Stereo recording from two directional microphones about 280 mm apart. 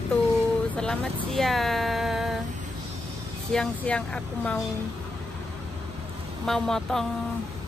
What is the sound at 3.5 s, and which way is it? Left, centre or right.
Speech, centre.